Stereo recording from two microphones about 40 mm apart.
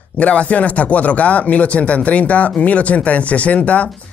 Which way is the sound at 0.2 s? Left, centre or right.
Left.